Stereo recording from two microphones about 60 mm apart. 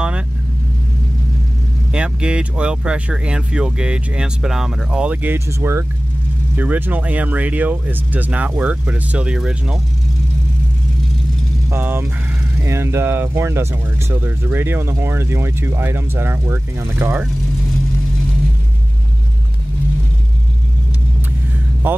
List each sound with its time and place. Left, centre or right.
1.9 s speech: centre
5.5 s speech: right
6.5 s speech: right; by 9.8 s centre
11.7 s speech: right
12.6 s speech: right
21.8 s speech: right